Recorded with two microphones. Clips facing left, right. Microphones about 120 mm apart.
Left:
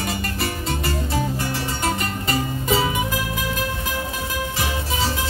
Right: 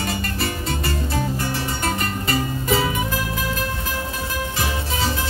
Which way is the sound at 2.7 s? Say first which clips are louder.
Even; 20° left (ahead or behind).